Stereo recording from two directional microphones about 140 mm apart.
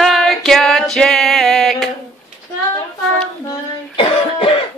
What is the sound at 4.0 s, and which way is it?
Cough, 40° left (ahead or behind).